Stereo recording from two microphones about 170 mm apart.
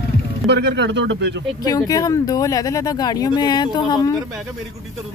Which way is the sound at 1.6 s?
20° left (ahead or behind).